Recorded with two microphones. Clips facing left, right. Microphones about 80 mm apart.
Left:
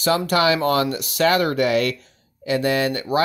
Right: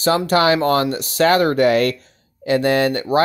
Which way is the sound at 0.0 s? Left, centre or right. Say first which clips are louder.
Right 3 dB; right.